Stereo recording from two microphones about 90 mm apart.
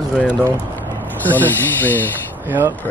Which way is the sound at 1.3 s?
20° left (ahead or behind).